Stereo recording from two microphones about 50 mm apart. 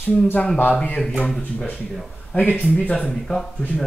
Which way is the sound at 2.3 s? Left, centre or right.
Left.